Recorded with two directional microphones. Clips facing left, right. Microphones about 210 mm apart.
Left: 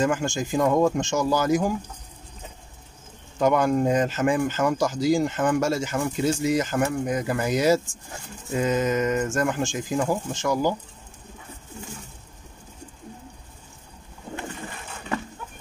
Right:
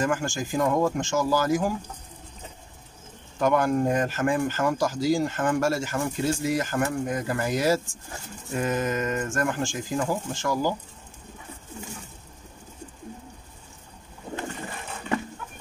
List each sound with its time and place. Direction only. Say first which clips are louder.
0.0 s speech: left 3 dB; 20° left (ahead or behind)
3.3 s speech: left 2 dB; 20° left (ahead or behind)